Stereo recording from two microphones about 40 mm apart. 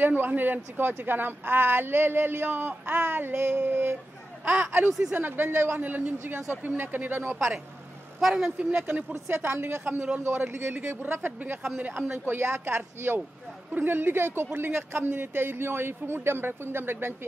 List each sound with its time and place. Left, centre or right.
0.0 s speech: right
4.5 s speech: right
5.8 s speech: right
6.1 s speech: right
8.2 s speech: centre
8.5 s speech: right
9.3 s speech: right
12.1 s speech: right
13.7 s speech: right